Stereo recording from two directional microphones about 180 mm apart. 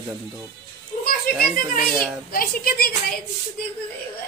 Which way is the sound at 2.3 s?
55° left (ahead or behind).